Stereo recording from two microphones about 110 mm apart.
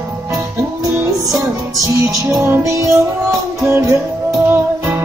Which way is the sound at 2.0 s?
25° right (ahead or behind).